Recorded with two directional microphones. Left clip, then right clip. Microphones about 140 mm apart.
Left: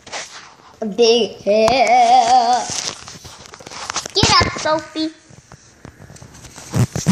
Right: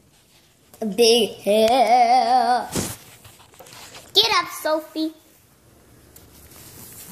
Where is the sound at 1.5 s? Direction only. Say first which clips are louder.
Left 3 dB; 15° right (ahead or behind).